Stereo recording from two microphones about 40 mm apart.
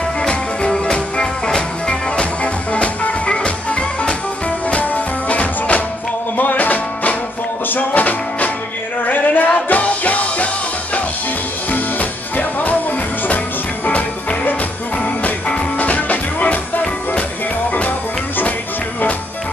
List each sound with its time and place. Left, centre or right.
0.2 s music: left
11.7 s music: left
15.2 s music: left